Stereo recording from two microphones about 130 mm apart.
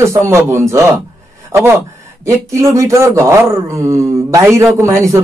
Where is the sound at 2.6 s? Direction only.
25° right (ahead or behind).